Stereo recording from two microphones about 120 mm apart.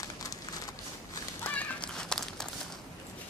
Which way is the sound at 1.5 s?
5° left (ahead or behind).